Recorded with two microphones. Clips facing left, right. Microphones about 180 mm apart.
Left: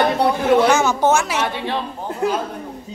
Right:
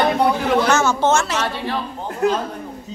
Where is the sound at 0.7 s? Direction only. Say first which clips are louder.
Left 1 dB; 15° left (ahead or behind).